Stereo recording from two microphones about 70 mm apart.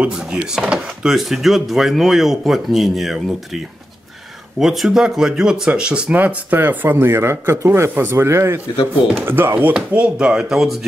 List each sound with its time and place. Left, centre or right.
0.0 s speech: centre; by 9.8 s right
9.9 s speech: centre
10.5 s speech: centre